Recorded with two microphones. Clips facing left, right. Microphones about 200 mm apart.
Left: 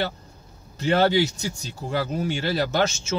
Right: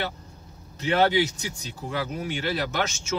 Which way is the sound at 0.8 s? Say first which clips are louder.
Left 2 dB; 35° left (ahead or behind).